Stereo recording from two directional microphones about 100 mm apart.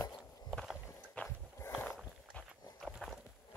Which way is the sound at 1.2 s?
15° left (ahead or behind).